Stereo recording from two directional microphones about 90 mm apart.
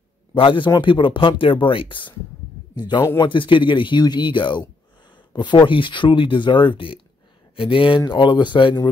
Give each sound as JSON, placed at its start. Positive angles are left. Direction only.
{"t": 0.3, "sound": "a man's voice", "side_deg": 65}
{"t": 2.7, "sound": "a man's voice", "side_deg": 50}
{"t": 3.2, "sound": "speech", "side_deg": 65}
{"t": 8.1, "sound": "speech", "side_deg": 60}